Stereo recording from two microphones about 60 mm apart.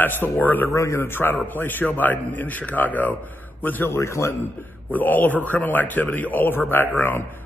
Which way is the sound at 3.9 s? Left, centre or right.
Left.